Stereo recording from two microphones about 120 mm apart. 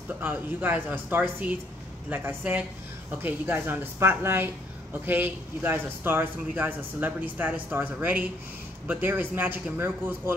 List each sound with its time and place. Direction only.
0.2 s a man's voice: 15° right (ahead or behind)